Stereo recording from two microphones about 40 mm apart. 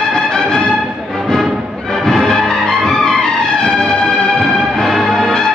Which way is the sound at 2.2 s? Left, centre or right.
Centre.